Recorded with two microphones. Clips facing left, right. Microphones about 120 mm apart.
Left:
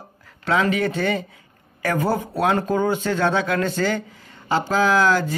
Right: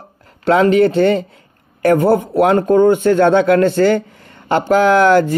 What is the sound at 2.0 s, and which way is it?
Speech, 65° right (ahead or behind).